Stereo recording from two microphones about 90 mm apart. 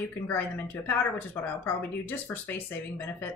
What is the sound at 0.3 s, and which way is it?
Speech, 20° left (ahead or behind).